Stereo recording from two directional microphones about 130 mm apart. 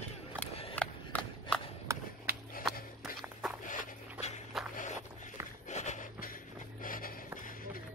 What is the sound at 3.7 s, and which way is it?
Dog, 60° left (ahead or behind).